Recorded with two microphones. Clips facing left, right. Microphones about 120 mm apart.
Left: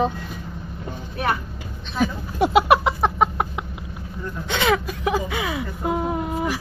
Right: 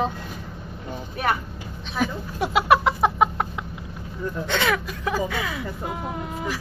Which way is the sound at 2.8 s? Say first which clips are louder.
Even; centre (ahead or behind).